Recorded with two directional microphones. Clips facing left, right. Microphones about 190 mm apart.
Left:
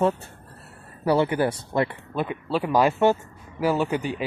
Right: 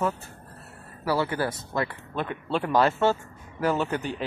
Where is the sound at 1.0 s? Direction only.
20° left (ahead or behind).